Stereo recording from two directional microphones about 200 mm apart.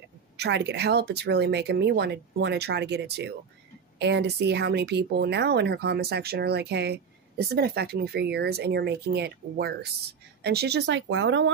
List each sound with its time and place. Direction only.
0.4 s speech: 60° right (ahead or behind)